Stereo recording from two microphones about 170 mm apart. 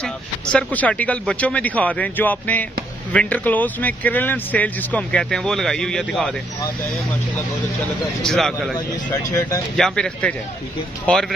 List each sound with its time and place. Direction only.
0.0 s speech: 5° left (ahead or behind)
8.0 s speech: centre (ahead or behind)
8.7 s speech: 20° left (ahead or behind)
9.8 s speech: 5° left (ahead or behind)